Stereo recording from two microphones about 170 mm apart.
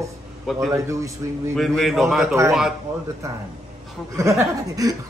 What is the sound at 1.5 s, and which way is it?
Speech, centre (ahead or behind).